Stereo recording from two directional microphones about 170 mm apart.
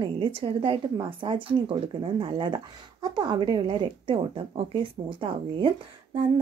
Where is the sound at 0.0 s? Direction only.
30° right (ahead or behind).